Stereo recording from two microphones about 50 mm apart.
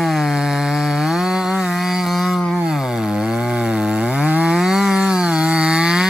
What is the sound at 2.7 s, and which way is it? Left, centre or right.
Chainsaw, centre.